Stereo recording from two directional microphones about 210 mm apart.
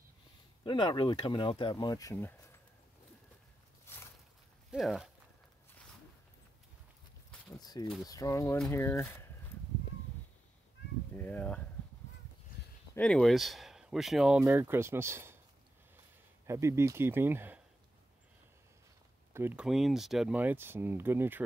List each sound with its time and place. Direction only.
0.7 s speech: 20° left (ahead or behind)
3.8 s a sound: 10° left (ahead or behind)
4.6 s speech: centre (ahead or behind)
7.6 s speech: 20° left (ahead or behind)
11.1 s speech: 10° left (ahead or behind)
12.9 s speech: 5° left (ahead or behind); by 15.3 s 10° right (ahead or behind)
16.4 s speech: 15° right (ahead or behind)
19.3 s speech: 10° right (ahead or behind)